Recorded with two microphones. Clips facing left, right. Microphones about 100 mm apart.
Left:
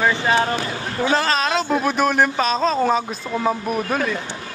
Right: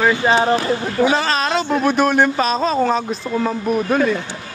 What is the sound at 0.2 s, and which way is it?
Speech, 20° right (ahead or behind).